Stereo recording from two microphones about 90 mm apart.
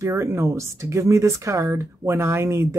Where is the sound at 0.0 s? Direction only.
30° right (ahead or behind).